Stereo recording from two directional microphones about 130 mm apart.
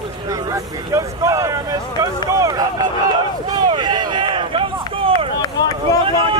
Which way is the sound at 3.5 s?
35° right (ahead or behind).